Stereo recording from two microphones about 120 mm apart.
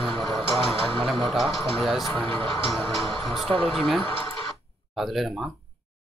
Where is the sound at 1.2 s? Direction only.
Centre (ahead or behind).